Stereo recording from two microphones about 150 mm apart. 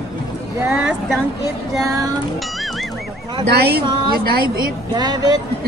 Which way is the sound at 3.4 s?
90° right.